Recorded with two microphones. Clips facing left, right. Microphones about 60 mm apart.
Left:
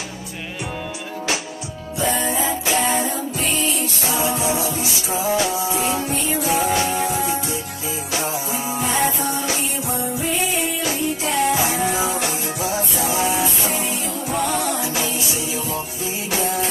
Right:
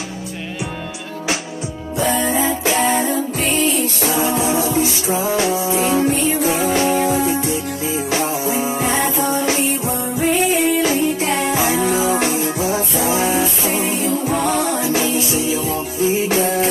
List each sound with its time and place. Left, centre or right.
2.0 s music: right